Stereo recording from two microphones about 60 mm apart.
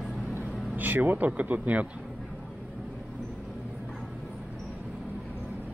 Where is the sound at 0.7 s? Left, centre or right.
Right.